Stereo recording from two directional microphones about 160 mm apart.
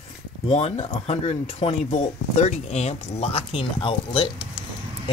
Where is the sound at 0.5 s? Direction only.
40° left (ahead or behind).